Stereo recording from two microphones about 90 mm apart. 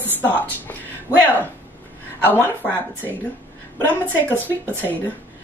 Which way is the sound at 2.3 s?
25° right (ahead or behind).